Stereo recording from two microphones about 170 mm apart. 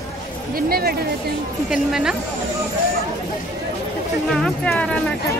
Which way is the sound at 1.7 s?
5° right (ahead or behind).